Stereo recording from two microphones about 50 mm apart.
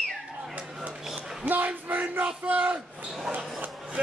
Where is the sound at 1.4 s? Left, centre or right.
Right.